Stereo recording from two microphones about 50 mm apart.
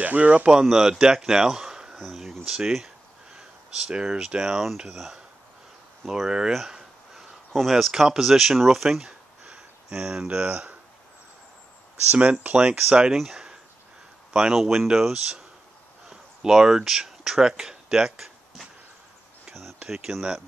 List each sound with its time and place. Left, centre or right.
0.0 s speech: right
0.5 s speech: centre
2.0 s a sound: centre
2.4 s speech: centre
7.2 s speech: centre
9.5 s speech: right
12.1 s speech: right
13.1 s speech: centre
19.9 s speech: centre